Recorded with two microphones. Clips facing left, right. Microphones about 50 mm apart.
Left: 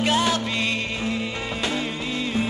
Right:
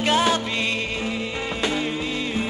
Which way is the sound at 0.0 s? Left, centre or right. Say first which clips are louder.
Right 1 dB; centre.